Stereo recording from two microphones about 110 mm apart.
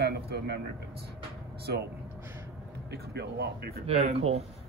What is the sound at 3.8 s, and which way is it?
Speech, 70° right (ahead or behind).